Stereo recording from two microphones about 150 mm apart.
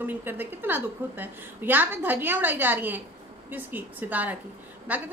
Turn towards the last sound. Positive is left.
turn(degrees=-10)  # may be behind; listen again after turning